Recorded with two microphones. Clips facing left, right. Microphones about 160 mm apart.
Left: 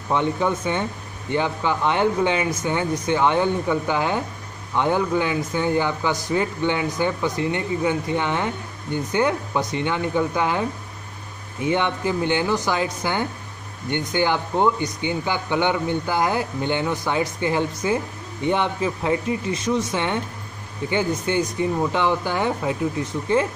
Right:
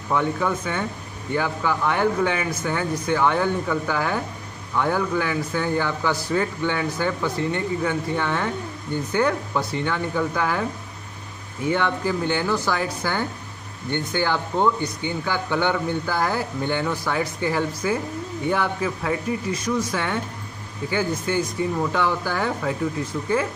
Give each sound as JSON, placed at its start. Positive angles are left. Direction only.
{"t": 0.1, "sound": "speech", "side_deg": 20}
{"t": 11.6, "sound": "speech", "side_deg": 20}